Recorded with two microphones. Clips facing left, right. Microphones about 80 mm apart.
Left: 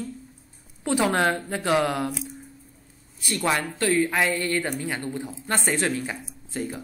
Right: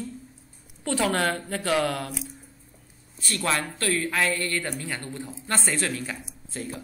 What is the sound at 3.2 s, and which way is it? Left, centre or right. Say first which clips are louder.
Speech: left 2 dB; centre.